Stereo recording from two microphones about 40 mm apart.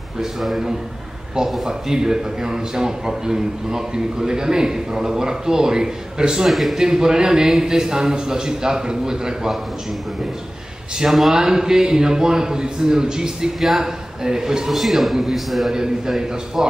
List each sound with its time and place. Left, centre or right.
0.2 s a man's voice: centre
1.7 s a man's voice: centre
6.5 s a man's voice: centre
6.8 s a man's voice: centre
11.0 s a man's voice: centre
14.7 s a man's voice: centre
15.7 s a man's voice: centre